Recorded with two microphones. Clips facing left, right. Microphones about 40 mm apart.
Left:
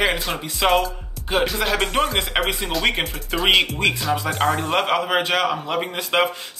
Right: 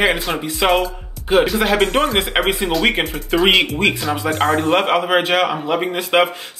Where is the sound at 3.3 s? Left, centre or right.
Centre.